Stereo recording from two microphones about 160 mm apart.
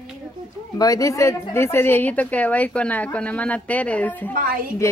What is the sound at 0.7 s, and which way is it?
A woman's voice, 20° left (ahead or behind).